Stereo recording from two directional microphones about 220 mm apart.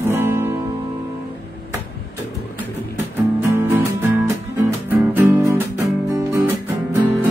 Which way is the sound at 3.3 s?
10° right (ahead or behind).